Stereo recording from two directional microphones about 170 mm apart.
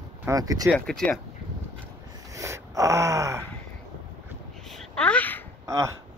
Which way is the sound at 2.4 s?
20° right (ahead or behind).